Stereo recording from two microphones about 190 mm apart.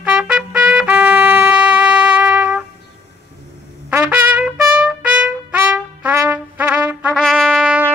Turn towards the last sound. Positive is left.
turn(degrees=-10)  # may be behind; listen again after turning